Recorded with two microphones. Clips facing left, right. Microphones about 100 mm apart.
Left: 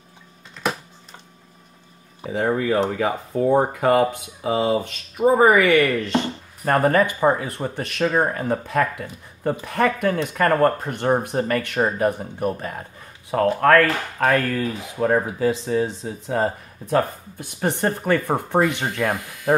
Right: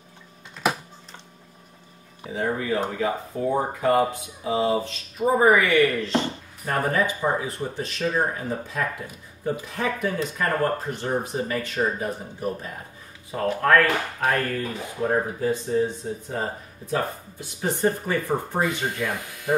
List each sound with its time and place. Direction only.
2.3 s speech: 70° left (ahead or behind)
13.3 s speech: 75° left (ahead or behind)
14.3 s speech: 90° left; by 19.5 s 70° left (ahead or behind)